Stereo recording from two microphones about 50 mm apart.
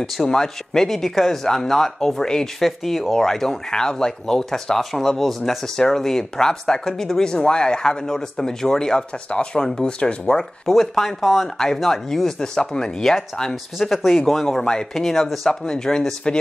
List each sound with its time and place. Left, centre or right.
0.0 s speech: centre
2.6 s speech: centre
10.6 s speech: centre
15.6 s speech: centre